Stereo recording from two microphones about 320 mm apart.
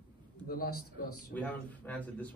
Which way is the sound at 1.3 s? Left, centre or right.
Centre.